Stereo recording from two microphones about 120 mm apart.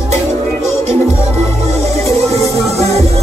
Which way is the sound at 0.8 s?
65° right (ahead or behind).